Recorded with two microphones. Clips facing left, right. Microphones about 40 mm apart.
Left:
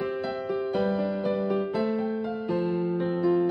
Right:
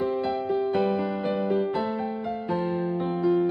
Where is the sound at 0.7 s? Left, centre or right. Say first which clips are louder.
Right 1 dB; right.